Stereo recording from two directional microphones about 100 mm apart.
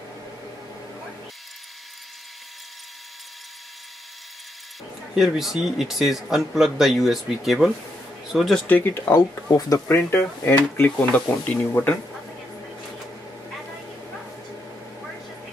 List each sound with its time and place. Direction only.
5.1 s a man's voice: 5° right (ahead or behind)
8.6 s speech: 20° left (ahead or behind)
9.5 s speech: 40° left (ahead or behind)
9.8 s speech: 25° left (ahead or behind)